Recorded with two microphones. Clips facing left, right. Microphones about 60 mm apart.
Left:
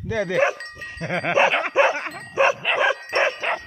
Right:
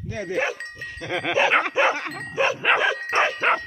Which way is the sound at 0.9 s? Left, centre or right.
Left.